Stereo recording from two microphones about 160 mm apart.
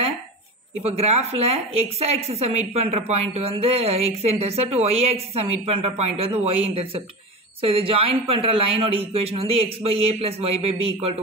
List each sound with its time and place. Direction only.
0.8 s a woman's voice: 40° right (ahead or behind)